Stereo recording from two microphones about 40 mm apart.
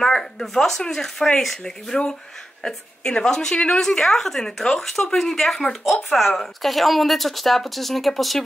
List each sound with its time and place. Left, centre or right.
0.0 s a woman's voice: centre